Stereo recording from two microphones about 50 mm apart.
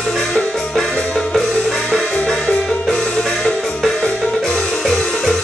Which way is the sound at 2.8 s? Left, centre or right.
Centre.